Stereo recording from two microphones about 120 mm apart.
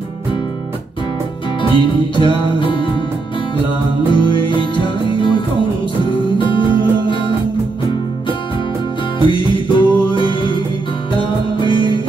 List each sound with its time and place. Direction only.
1.6 s music: 45° left (ahead or behind)
4.1 s music: 40° left (ahead or behind)
9.3 s music: 45° left (ahead or behind)